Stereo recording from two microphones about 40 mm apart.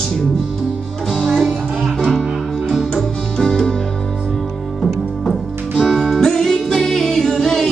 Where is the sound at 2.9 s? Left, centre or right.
Centre.